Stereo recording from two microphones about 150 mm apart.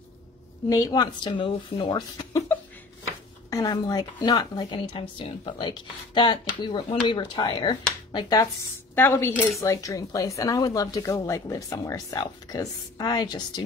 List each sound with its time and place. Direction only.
0.7 s speech: 25° left (ahead or behind)
3.4 s speech: 25° left (ahead or behind)
8.9 s a woman's voice: 15° left (ahead or behind)